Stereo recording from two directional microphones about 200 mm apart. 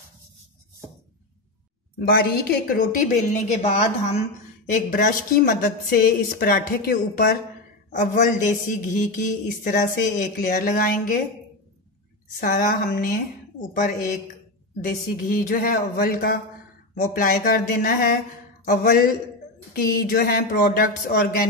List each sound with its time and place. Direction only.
2.0 s a woman's voice: 50° left (ahead or behind)
3.6 s a man's voice: 35° left (ahead or behind)
4.7 s a woman's voice: 45° left (ahead or behind)
12.4 s a woman's voice: 45° left (ahead or behind)